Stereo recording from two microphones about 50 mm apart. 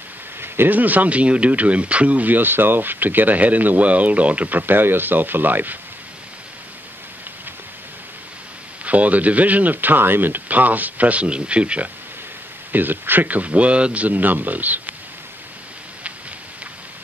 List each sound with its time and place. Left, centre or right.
0.4 s a sound: right
0.7 s speech: right
8.8 s speech: right
12.7 s speech: right